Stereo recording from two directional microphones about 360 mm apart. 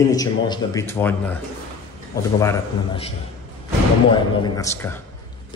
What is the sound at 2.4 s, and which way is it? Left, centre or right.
Speech, centre.